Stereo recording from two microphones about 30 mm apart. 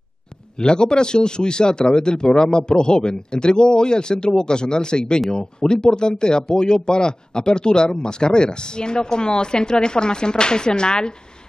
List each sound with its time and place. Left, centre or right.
0.6 s speech: left